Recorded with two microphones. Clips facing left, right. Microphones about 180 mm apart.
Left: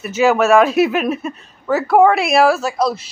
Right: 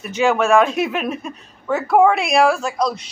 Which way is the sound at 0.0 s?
5° left (ahead or behind).